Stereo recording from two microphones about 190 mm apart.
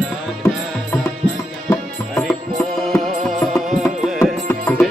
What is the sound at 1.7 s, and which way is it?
Music, centre (ahead or behind).